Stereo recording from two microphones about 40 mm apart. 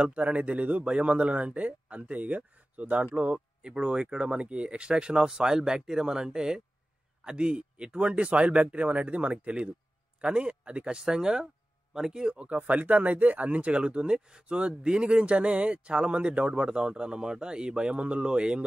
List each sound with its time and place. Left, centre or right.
0.1 s speech: right
3.3 s speech: right
12.4 s speech: right